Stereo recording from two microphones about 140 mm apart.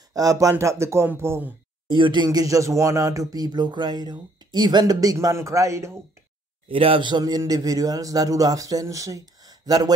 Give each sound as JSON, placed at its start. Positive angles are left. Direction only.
{"t": 0.1, "sound": "speech", "side_deg": -25}
{"t": 1.9, "sound": "speech", "side_deg": -35}
{"t": 6.7, "sound": "speech", "side_deg": -40}